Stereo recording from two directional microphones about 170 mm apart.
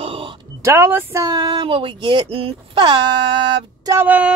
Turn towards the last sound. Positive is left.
turn(degrees=-10)  # may be behind; listen again after turning